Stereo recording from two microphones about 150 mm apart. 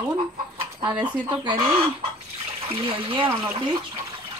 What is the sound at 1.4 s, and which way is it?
Speech, 35° right (ahead or behind).